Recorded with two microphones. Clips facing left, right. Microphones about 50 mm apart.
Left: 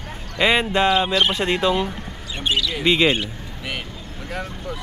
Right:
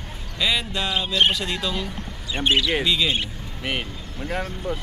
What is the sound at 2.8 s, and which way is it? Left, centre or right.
Speech, left.